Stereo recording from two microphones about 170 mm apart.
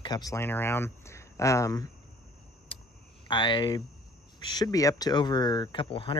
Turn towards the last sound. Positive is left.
turn(degrees=30)  # may be behind; listen again after turning